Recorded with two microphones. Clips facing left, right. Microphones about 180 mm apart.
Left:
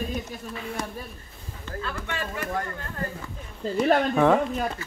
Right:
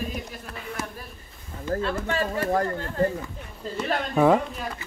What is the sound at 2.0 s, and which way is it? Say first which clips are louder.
Speech: right 6 dB; 40° right (ahead or behind).